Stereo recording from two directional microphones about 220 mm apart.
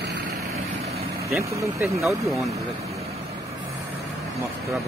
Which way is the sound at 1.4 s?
15° right (ahead or behind).